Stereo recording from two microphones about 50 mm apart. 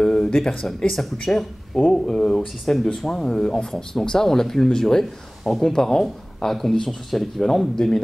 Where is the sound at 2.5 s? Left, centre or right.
Centre.